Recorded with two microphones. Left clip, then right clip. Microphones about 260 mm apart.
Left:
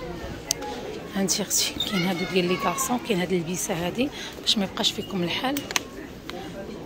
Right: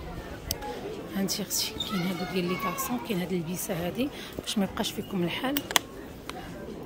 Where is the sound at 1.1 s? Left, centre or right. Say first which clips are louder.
Left 7 dB; centre.